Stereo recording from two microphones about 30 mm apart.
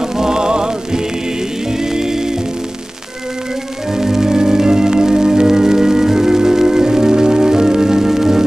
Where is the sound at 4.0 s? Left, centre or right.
Centre.